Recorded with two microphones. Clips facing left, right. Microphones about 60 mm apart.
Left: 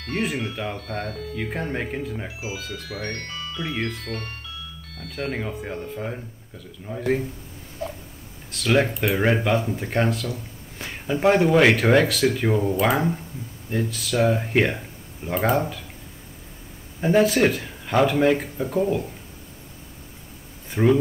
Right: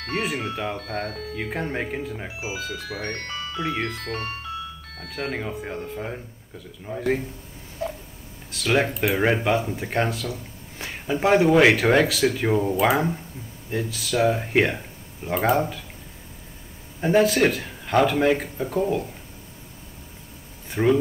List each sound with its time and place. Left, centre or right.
0.1 s speech: centre
1.0 s speech: right
1.5 s speech: centre
2.2 s speech: centre
2.9 s speech: right
3.5 s speech: centre
5.3 s speech: centre
7.8 s cat: centre
8.5 s speech: centre
17.0 s speech: centre
20.6 s speech: centre